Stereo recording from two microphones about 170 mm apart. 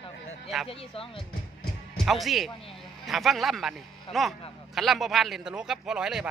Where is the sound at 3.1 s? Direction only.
Centre (ahead or behind).